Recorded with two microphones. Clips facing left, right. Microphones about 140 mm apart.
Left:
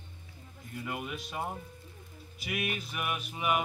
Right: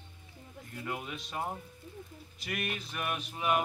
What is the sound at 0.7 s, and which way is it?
Speech, centre (ahead or behind).